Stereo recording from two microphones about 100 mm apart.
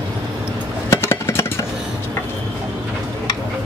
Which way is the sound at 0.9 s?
25° left (ahead or behind).